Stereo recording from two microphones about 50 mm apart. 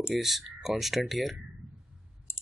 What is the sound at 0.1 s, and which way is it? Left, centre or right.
Speech, centre.